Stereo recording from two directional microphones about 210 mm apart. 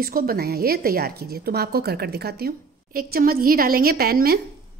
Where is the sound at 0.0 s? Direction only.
45° right (ahead or behind).